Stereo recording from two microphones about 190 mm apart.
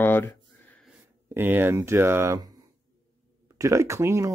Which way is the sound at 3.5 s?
15° right (ahead or behind).